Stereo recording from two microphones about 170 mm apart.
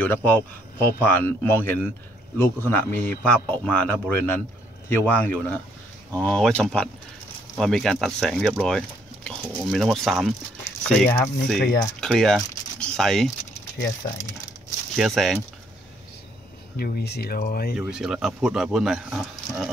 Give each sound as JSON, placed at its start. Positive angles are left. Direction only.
{"t": 0.0, "sound": "a man's voice", "side_deg": 10}
{"t": 15.0, "sound": "speech", "side_deg": 0}
{"t": 16.7, "sound": "speech", "side_deg": 65}
{"t": 17.7, "sound": "speech", "side_deg": -5}